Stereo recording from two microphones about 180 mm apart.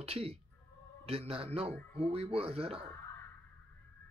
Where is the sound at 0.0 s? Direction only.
35° right (ahead or behind).